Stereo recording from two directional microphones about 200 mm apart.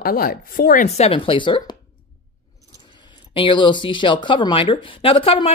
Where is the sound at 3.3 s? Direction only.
25° left (ahead or behind).